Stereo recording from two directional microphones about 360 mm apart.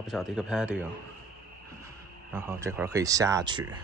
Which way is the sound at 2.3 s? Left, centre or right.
Centre.